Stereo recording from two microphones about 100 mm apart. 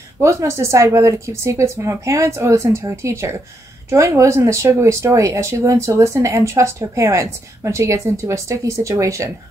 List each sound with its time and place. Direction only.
0.2 s speech: 30° right (ahead or behind)